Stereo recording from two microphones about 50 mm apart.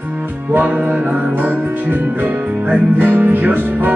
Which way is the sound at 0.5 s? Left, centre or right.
Right.